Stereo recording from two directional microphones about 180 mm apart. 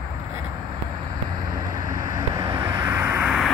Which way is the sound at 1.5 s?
45° left (ahead or behind).